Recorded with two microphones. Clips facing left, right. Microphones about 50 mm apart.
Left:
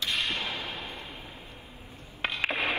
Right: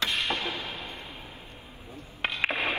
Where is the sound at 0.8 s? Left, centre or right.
Right.